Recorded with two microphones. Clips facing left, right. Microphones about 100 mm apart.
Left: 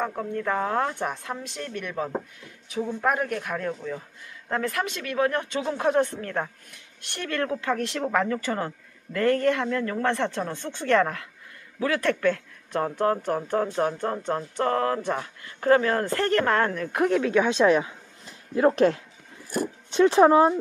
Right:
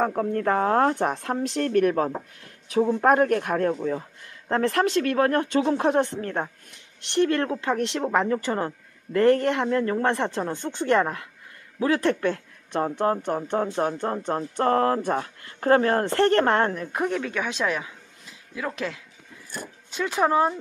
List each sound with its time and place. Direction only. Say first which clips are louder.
0.0 s a woman's voice: right 5 dB; 40° right (ahead or behind); by 16.9 s 25° right (ahead or behind)
16.9 s speech: left 4 dB; centre (ahead or behind)
17.3 s speech: left 7 dB; 20° left (ahead or behind)
18.5 s speech: left 11 dB; 40° left (ahead or behind)
19.9 s speech: left 6 dB; 25° left (ahead or behind)